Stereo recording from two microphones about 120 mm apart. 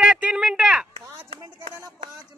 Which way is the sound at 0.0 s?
10° right (ahead or behind).